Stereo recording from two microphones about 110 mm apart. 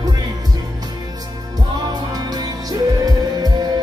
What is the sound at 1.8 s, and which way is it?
Music, 35° right (ahead or behind).